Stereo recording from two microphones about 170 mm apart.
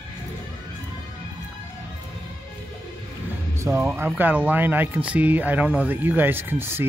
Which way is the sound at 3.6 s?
15° right (ahead or behind).